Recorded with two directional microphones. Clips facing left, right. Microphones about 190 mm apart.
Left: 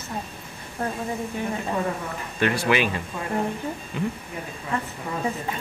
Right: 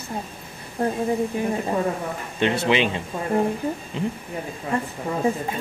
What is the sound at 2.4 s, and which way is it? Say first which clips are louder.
Speech: right 2 dB; 25° right (ahead or behind).